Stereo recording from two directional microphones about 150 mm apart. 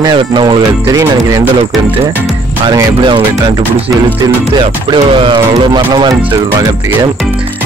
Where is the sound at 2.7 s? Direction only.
30° right (ahead or behind).